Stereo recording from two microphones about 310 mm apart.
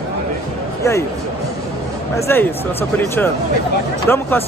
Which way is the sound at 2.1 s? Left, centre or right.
Centre.